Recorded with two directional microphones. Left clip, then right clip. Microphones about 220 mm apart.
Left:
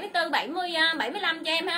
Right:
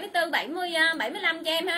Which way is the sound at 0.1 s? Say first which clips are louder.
Even; 20° left (ahead or behind).